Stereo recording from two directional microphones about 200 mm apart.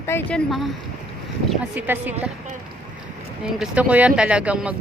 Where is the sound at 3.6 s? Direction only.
5° right (ahead or behind).